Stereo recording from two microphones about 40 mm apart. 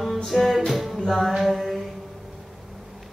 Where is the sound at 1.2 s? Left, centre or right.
Centre.